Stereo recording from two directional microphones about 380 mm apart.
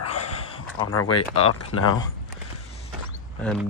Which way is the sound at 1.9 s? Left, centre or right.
Centre.